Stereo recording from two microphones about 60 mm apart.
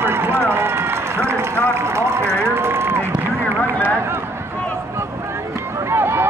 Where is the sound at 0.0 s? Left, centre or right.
Right.